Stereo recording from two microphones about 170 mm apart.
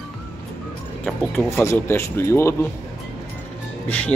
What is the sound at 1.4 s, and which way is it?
Speech, 15° left (ahead or behind).